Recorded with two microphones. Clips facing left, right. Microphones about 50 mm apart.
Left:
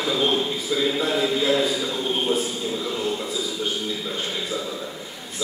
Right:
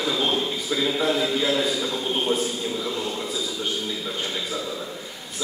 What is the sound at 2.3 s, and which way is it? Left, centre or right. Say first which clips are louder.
Speech: even; right.